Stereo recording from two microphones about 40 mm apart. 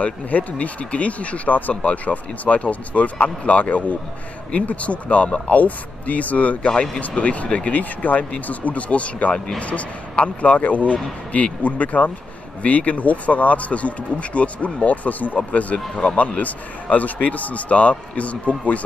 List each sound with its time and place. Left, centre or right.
0.0 s speech: left
7.7 s speech: left
15.3 s speech: left